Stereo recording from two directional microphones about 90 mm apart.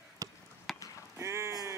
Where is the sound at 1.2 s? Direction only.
30° right (ahead or behind).